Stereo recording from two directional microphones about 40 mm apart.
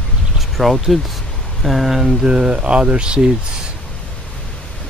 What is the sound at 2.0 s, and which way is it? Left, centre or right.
Speech, right.